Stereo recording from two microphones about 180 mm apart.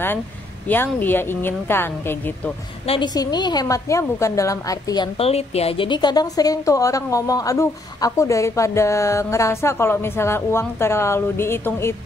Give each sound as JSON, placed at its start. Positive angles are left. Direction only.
{"t": 0.7, "sound": "a woman's voice", "side_deg": 10}
{"t": 2.9, "sound": "a woman's voice", "side_deg": 25}